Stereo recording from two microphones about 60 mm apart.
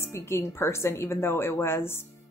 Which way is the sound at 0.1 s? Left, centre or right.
Left.